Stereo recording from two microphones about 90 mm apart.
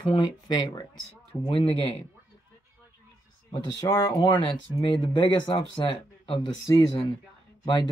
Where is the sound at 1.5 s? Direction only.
80° left.